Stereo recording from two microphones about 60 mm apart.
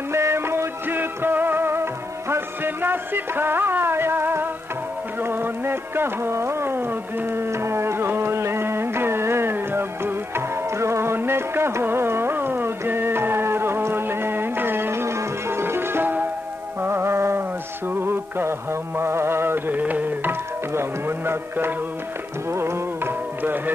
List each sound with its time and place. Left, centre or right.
0.1 s music: right
16.8 s mantra: right
19.8 s music: right